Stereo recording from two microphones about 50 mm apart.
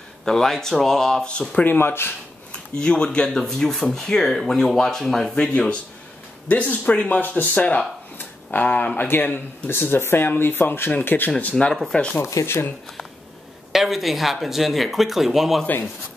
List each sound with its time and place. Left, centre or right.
0.2 s speech: centre
1.6 s speech: left
2.5 s speech: centre
5.5 s speech: left
6.5 s speech: left
7.2 s speech: left
7.5 s speech: left
8.5 s a sound: left
8.9 s speech: left
11.5 s speech: centre
12.4 s speech: left
13.7 s speech: centre